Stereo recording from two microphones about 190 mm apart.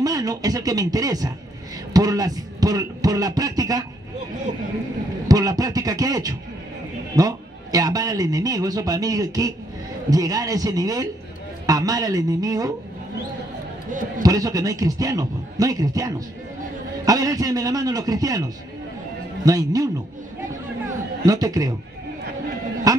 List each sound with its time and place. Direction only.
0.0 s a man's voice: 20° right (ahead or behind)
2.0 s a sound: 20° right (ahead or behind)
5.3 s a man's voice: 20° right (ahead or behind)
14.2 s a man's voice: 20° right (ahead or behind)
21.3 s a man's voice: 20° right (ahead or behind)
22.9 s a sound: 20° right (ahead or behind)